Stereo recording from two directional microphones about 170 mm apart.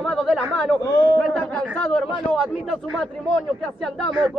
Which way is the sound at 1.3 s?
5° left (ahead or behind).